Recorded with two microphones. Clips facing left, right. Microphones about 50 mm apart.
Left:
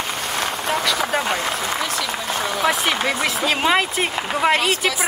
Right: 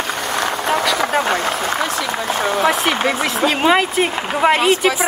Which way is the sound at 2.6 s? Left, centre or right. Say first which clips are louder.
Right 2 dB; centre.